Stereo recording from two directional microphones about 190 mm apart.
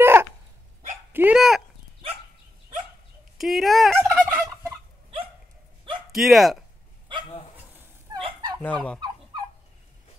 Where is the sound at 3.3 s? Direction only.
Centre (ahead or behind).